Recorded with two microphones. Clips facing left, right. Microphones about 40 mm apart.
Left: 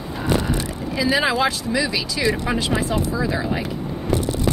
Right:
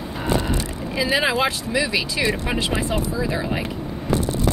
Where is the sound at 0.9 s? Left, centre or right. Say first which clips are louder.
Left 1 dB; centre.